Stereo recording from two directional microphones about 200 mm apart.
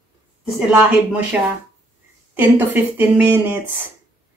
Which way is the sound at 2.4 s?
10° right (ahead or behind).